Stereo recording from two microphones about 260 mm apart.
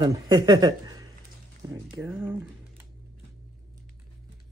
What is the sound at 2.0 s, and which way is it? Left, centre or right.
Speech, centre.